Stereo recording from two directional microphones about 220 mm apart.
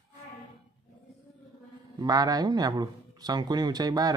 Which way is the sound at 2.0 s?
15° right (ahead or behind).